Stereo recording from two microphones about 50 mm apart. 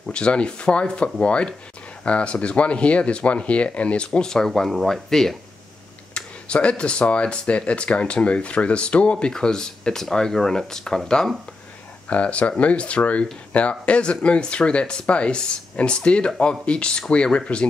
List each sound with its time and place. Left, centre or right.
0.0 s speech: left
6.1 s speech: left
9.3 s speech: centre
12.1 s speech: left